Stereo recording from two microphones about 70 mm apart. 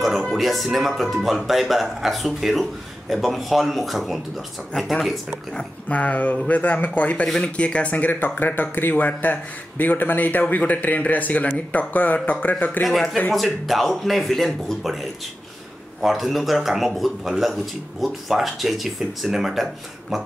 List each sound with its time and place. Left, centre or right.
0.0 s speech: centre
5.9 s speech: left
12.8 s speech: centre